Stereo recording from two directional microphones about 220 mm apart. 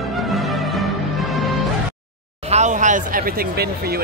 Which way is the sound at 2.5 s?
35° right (ahead or behind).